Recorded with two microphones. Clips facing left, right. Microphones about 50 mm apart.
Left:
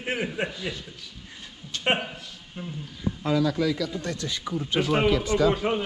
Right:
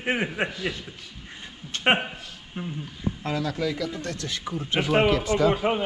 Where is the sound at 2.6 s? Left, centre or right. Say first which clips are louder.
Right 3 dB; right.